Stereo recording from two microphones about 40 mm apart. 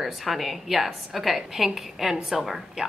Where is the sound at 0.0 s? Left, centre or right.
Centre.